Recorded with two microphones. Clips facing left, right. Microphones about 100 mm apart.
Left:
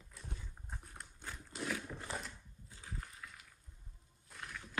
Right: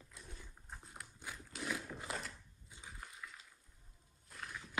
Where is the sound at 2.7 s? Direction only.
15° right (ahead or behind).